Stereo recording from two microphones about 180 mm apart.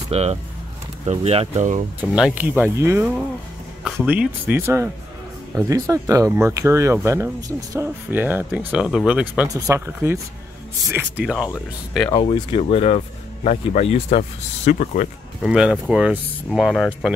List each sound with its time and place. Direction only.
0.1 s speech: 35° right (ahead or behind)
2.0 s speech: 5° right (ahead or behind)
12.3 s speech: 30° left (ahead or behind)
15.4 s speech: 5° right (ahead or behind)